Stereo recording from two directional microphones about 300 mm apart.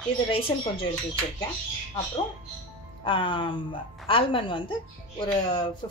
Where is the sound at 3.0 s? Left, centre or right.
Centre.